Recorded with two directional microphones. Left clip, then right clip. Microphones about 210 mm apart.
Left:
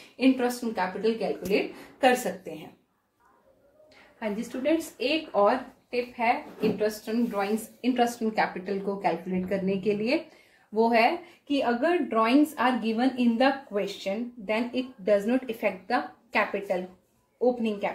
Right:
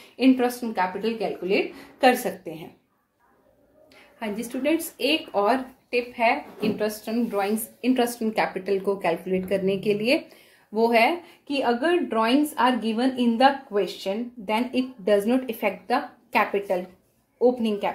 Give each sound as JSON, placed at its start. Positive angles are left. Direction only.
{"t": 0.2, "sound": "speech", "side_deg": -40}
{"t": 4.2, "sound": "speech", "side_deg": -30}
{"t": 13.7, "sound": "speech", "side_deg": -45}